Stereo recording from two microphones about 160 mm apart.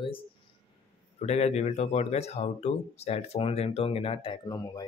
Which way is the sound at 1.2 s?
40° left (ahead or behind).